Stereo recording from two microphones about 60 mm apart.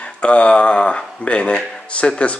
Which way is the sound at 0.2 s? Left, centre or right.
Centre.